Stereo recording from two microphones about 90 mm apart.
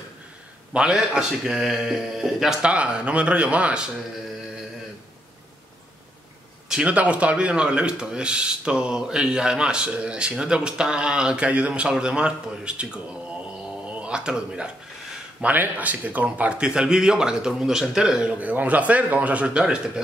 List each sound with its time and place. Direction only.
0.7 s speech: 10° right (ahead or behind)
6.7 s speech: 15° right (ahead or behind)